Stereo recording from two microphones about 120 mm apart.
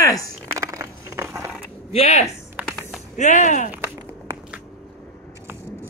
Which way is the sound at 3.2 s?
90° left.